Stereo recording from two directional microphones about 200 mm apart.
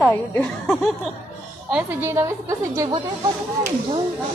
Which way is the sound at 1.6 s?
10° right (ahead or behind).